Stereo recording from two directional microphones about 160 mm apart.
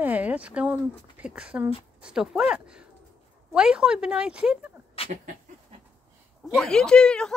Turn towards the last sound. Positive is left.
turn(degrees=5)  # may be behind; listen again after turning